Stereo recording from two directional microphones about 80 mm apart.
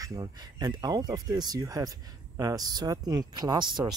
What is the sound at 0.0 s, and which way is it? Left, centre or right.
Speech, right.